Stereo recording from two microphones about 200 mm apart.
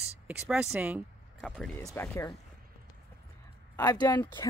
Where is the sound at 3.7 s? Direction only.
20° left (ahead or behind).